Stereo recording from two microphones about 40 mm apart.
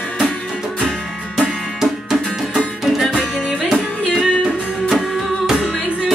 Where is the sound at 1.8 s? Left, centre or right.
Centre.